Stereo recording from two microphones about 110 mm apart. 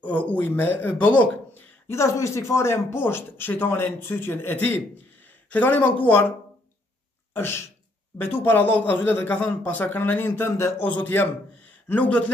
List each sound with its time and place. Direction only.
0.0 s speech: 15° left (ahead or behind)
1.9 s speech: 25° left (ahead or behind)
7.3 s speech: 25° left (ahead or behind)